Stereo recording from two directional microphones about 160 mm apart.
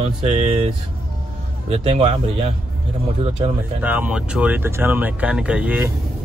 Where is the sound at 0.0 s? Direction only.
45° right (ahead or behind).